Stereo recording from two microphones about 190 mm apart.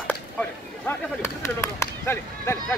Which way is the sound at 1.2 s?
15° left (ahead or behind).